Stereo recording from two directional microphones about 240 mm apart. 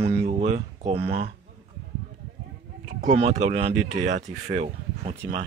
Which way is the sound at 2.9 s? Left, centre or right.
Right.